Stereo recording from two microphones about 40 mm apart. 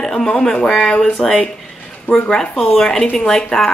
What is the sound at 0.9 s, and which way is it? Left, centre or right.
Speech, left.